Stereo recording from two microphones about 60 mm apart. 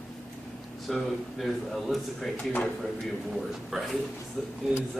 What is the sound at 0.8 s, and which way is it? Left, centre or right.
A man's voice, centre.